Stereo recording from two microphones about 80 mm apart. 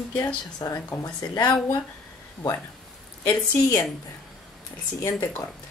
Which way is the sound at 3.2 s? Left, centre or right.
Left.